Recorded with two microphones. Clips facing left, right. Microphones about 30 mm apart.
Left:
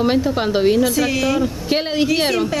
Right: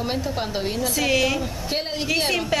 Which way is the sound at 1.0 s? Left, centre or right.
Centre.